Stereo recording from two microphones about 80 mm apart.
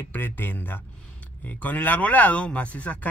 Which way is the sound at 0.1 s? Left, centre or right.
Left.